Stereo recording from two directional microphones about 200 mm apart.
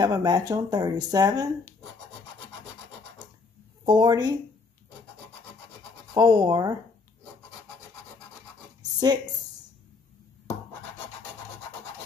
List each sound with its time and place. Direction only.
0.0 s speech: 20° right (ahead or behind)
3.8 s speech: 20° right (ahead or behind)
6.1 s speech: 20° right (ahead or behind)